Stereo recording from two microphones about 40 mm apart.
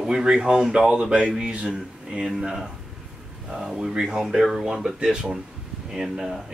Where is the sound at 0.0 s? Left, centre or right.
Centre.